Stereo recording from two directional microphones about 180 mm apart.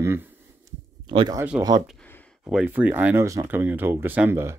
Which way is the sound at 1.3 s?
15° right (ahead or behind).